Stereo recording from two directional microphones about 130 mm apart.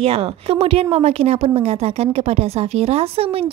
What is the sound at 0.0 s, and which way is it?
A woman's voice, 50° right (ahead or behind).